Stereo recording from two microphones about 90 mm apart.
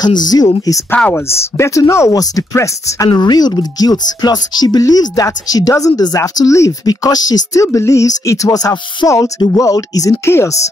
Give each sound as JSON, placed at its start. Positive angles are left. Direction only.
{"t": 0.0, "sound": "speech", "side_deg": 45}
{"t": 1.1, "sound": "speech", "side_deg": 35}
{"t": 3.2, "sound": "speech", "side_deg": 50}
{"t": 7.6, "sound": "speech", "side_deg": 35}